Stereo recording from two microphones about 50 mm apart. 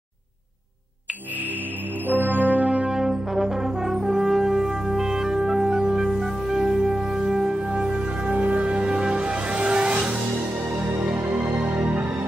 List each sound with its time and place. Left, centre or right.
2.0 s music: right
2.9 s brass instrument: centre
8.3 s music: right
10.7 s music: right